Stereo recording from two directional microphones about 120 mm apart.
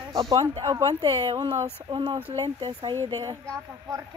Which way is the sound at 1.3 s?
45° right (ahead or behind).